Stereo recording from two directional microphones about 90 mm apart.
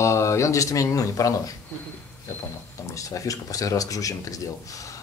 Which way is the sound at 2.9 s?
40° left (ahead or behind).